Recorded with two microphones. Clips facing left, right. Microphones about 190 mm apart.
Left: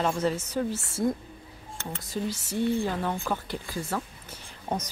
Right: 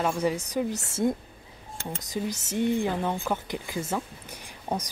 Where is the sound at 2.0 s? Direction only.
20° right (ahead or behind).